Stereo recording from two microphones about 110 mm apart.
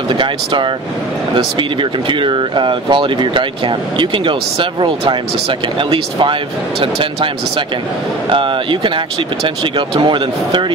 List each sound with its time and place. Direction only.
0.1 s speech: 45° right (ahead or behind)